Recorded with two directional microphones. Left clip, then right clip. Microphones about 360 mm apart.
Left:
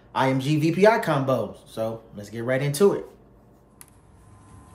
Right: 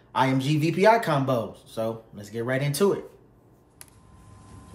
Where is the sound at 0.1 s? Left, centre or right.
Centre.